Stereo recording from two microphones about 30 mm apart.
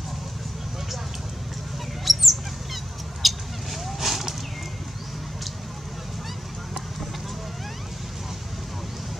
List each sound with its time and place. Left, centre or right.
2.0 s goose: centre